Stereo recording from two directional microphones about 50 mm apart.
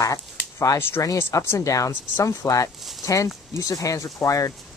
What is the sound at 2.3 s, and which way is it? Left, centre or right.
Speech, left.